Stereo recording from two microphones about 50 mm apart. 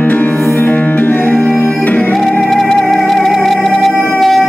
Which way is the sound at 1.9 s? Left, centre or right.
Left.